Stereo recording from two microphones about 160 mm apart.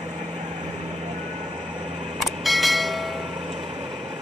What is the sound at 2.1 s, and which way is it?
Church bell, centre (ahead or behind).